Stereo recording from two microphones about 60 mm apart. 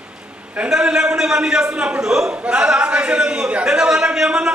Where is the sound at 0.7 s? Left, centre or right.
Centre.